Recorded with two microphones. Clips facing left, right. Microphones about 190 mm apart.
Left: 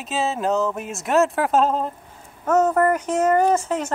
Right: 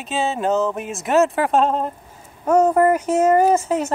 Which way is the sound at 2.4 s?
10° right (ahead or behind).